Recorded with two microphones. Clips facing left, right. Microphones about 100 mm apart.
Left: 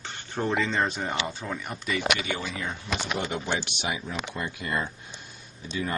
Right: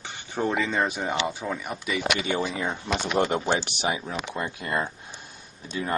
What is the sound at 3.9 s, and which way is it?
Speech, 25° right (ahead or behind).